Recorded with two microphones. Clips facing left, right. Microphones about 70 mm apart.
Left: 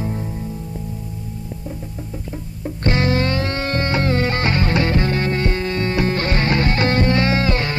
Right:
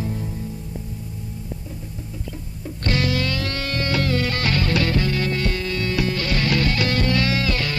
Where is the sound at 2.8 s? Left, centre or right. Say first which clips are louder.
Left 4 dB; left.